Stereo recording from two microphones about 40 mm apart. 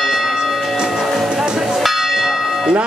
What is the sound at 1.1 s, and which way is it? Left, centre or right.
Music, centre.